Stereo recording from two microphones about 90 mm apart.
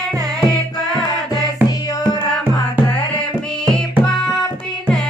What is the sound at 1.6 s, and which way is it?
Music, 20° right (ahead or behind).